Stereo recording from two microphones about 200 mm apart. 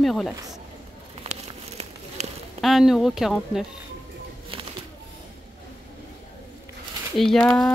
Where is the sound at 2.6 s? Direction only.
Centre (ahead or behind).